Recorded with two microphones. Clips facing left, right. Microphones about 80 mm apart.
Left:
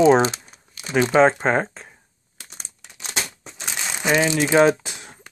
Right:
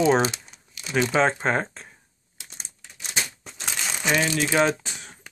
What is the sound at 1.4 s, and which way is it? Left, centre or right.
Speech, centre.